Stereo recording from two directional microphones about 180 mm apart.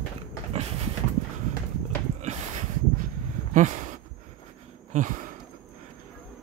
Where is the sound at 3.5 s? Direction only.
45° right (ahead or behind).